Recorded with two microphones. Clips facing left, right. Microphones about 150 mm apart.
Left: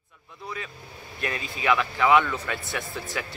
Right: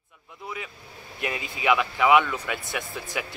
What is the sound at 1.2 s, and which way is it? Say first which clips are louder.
Speech: right 1 dB; 15° right (ahead or behind).